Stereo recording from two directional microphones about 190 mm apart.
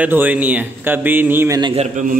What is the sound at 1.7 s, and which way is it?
Speech, 40° right (ahead or behind).